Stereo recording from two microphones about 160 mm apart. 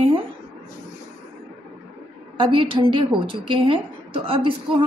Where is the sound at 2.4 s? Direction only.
30° right (ahead or behind).